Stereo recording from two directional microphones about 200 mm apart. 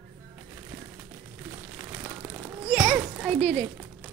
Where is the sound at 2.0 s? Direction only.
15° right (ahead or behind).